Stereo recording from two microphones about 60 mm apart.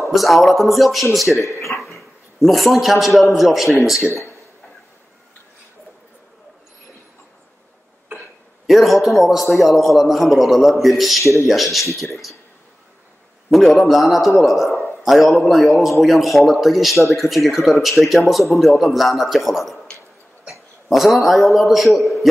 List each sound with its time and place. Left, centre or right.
0.0 s a man's voice: centre
1.4 s speech: left
1.8 s dog: centre
3.3 s a man's voice: centre
8.6 s a man's voice: centre
13.5 s a man's voice: centre
20.9 s a man's voice: centre